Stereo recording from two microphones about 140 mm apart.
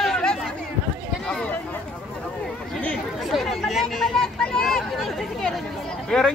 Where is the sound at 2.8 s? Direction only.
5° left (ahead or behind).